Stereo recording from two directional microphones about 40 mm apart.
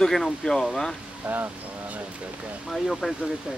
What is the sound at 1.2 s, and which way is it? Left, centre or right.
Speech, right.